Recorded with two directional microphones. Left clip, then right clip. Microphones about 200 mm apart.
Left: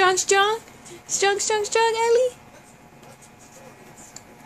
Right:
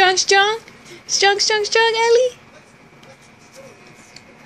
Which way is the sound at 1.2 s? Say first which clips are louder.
Right 6 dB; 10° left (ahead or behind).